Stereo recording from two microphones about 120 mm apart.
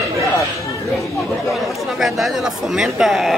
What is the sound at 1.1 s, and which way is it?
Chatter, centre (ahead or behind).